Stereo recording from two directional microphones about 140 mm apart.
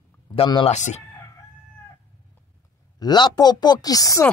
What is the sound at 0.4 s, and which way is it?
Speech, 40° left (ahead or behind).